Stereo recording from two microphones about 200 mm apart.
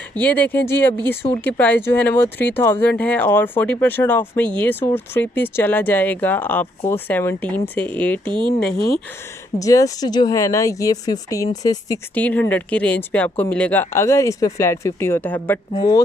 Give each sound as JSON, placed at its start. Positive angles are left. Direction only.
{"t": 0.2, "sound": "speech", "side_deg": 10}
{"t": 8.3, "sound": "speech", "side_deg": -25}
{"t": 9.6, "sound": "speech", "side_deg": 15}
{"t": 15.7, "sound": "speech", "side_deg": 20}